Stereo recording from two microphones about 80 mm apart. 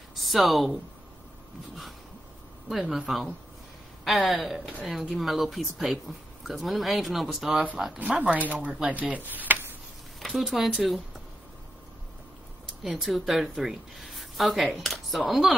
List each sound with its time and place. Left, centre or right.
0.1 s speech: centre
3.1 s speech: centre
8.0 s speech: centre
10.2 s speech: centre
12.8 s speech: centre